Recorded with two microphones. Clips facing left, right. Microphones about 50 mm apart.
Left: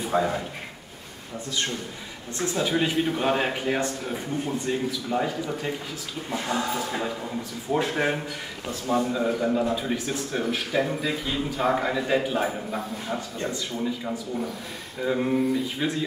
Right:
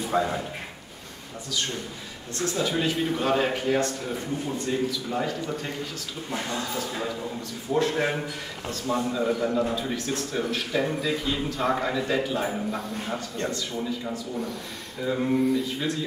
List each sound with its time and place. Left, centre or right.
0.0 s speech: centre
2.3 s a man's voice: centre
4.0 s a man's voice: centre
6.6 s a man's voice: centre
12.7 s a man's voice: centre